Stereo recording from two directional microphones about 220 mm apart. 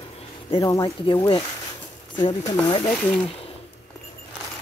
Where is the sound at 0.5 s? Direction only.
20° left (ahead or behind).